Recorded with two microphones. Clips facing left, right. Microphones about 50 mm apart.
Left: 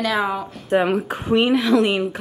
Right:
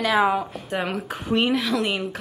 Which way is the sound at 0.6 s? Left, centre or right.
Centre.